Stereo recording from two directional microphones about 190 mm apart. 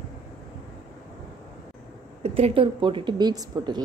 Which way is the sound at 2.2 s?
30° right (ahead or behind).